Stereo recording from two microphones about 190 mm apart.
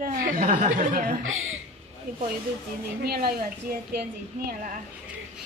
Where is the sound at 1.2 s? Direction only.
90° right.